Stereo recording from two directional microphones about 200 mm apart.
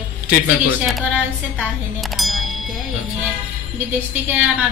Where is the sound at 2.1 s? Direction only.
Centre (ahead or behind).